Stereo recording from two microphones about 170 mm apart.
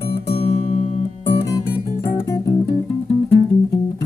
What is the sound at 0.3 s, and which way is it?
Music, 35° left (ahead or behind).